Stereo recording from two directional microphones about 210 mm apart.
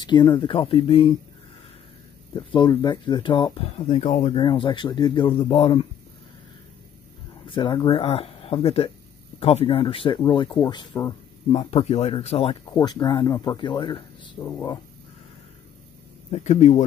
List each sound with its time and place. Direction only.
0.0 s speech: 20° left (ahead or behind)
2.3 s speech: 20° left (ahead or behind)
7.4 s speech: 20° left (ahead or behind)
11.5 s speech: 30° left (ahead or behind)
12.7 s speech: 20° left (ahead or behind)
16.3 s speech: 35° left (ahead or behind)